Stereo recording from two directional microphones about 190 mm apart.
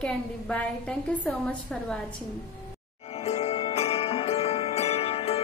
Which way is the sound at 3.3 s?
30° left (ahead or behind).